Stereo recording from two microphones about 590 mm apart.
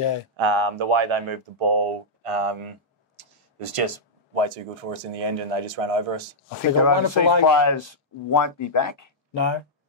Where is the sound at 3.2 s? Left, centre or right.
Right.